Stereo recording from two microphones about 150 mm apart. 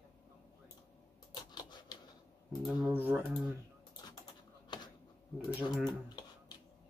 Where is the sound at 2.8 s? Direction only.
10° right (ahead or behind).